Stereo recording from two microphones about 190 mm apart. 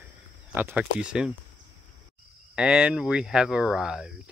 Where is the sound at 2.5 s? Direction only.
5° right (ahead or behind).